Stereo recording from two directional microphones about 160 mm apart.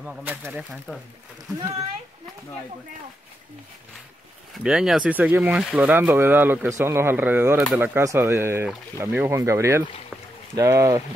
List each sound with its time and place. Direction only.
0.0 s speech: 10° right (ahead or behind)
4.6 s speech: 5° right (ahead or behind); by 11.0 s 20° right (ahead or behind)